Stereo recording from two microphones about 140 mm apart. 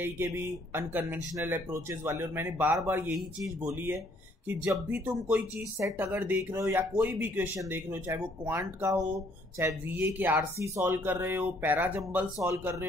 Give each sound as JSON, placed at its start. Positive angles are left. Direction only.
{"t": 0.7, "sound": "speech", "side_deg": -15}